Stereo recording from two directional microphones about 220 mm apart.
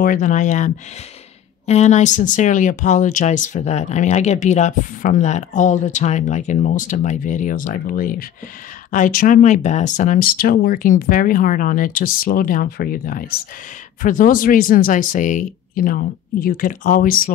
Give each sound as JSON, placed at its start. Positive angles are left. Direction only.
{"t": 0.0, "sound": "speech", "side_deg": 35}
{"t": 1.7, "sound": "speech", "side_deg": 30}